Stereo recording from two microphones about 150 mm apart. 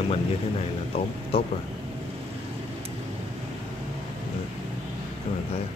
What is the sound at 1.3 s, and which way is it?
Speech, 40° left (ahead or behind).